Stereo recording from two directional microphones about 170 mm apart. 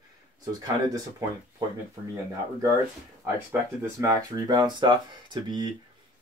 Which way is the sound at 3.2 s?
15° right (ahead or behind).